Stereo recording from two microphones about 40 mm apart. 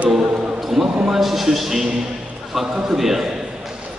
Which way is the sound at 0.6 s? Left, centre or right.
Centre.